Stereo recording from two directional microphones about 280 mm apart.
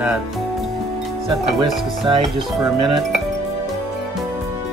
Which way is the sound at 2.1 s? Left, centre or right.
Centre.